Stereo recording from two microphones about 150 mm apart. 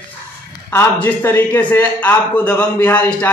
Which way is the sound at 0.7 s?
15° left (ahead or behind).